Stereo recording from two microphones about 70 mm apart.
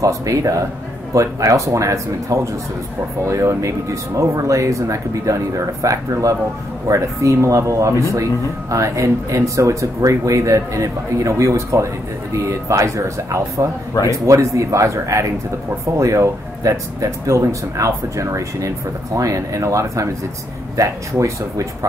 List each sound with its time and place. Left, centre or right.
0.0 s speech: right